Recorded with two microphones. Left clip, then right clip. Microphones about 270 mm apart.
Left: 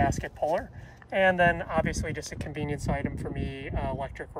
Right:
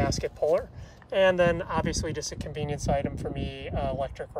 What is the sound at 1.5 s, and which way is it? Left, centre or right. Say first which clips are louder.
Speech: even; centre.